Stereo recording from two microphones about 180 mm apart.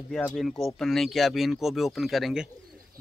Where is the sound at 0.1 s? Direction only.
Centre (ahead or behind).